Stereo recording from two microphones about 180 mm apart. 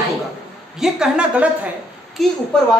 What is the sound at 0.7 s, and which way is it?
A woman's voice, 5° right (ahead or behind).